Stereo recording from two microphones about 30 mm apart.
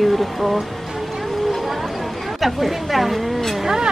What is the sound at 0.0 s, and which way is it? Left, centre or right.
Speech, centre.